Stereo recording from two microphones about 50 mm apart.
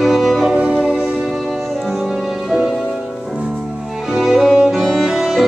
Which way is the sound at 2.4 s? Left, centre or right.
Centre.